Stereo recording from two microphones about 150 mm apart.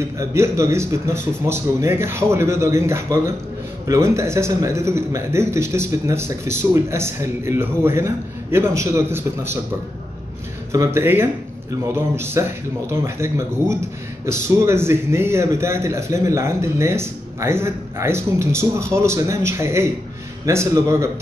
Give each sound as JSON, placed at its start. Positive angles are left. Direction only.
{"t": 0.2, "sound": "speech", "side_deg": -20}
{"t": 10.7, "sound": "a man's voice", "side_deg": -20}